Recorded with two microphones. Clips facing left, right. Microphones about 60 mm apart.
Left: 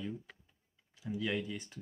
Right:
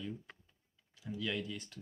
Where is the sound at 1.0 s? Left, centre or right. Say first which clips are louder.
Left 3 dB; left.